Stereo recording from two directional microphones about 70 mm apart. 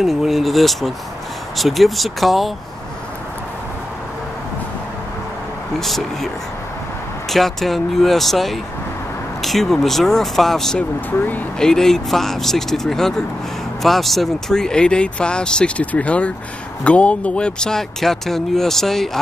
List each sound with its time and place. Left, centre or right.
0.0 s speech: centre
5.8 s speech: centre
11.1 s speech: left
11.6 s speech: centre